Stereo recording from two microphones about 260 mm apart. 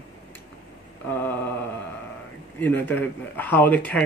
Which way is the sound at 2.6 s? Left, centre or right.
Centre.